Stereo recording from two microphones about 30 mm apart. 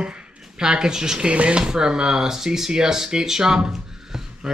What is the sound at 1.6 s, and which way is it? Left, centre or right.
Speech, right.